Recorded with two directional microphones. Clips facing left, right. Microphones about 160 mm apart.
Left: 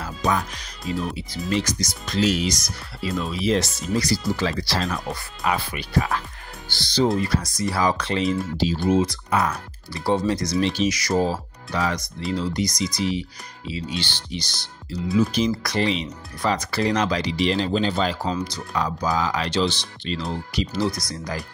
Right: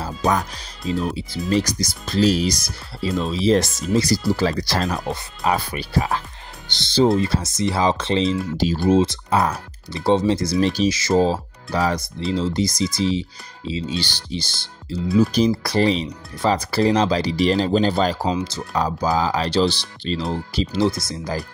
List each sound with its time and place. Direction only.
0.0 s music: 40° right (ahead or behind)
1.0 s speech: 35° right (ahead or behind)
5.0 s speech: 20° right (ahead or behind)
5.5 s speech: 40° right (ahead or behind)
18.3 s speech: 25° right (ahead or behind)